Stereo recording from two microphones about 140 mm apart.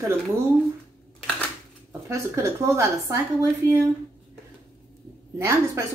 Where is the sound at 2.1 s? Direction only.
20° right (ahead or behind).